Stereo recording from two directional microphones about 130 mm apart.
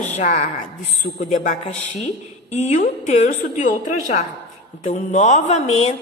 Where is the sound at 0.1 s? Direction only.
70° left (ahead or behind).